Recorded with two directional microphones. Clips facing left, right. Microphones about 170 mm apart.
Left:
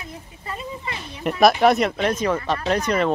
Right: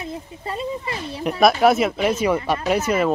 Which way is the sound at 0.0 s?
30° right (ahead or behind).